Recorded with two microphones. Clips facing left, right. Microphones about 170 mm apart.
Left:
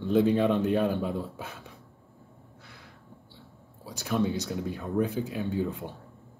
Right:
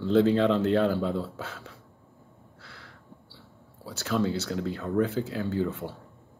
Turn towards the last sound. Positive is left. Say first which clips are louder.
# right 1 dB
turn(degrees=15)  # may be behind; listen again after turning